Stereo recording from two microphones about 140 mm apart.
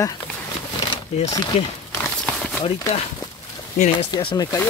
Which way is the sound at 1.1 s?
50° left (ahead or behind).